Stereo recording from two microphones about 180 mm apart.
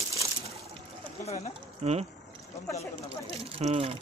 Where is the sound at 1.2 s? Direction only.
40° left (ahead or behind).